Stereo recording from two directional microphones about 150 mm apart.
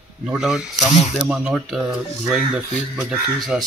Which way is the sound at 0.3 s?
5° right (ahead or behind).